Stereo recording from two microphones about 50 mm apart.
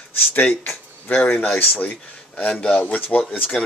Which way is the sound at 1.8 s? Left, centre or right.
Left.